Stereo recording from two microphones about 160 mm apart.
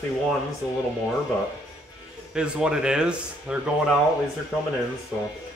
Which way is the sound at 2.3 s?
5° right (ahead or behind).